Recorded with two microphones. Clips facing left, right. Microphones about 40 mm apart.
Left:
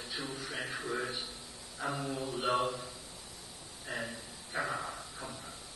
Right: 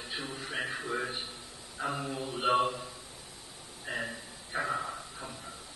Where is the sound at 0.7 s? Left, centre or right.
Centre.